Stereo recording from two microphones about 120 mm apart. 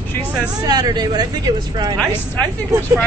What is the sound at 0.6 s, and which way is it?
Speech, 35° right (ahead or behind).